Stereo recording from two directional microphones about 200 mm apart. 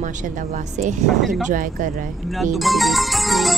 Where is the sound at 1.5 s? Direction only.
40° right (ahead or behind).